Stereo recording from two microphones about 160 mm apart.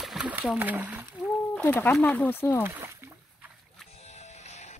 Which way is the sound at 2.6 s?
15° right (ahead or behind).